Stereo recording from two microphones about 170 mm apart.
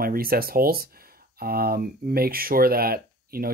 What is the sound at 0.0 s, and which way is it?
Speech, 60° right (ahead or behind).